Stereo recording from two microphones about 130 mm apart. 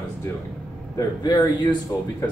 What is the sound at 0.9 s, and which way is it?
Speech, 30° left (ahead or behind).